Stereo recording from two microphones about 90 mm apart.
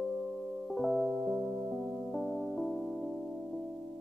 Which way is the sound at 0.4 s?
Centre (ahead or behind).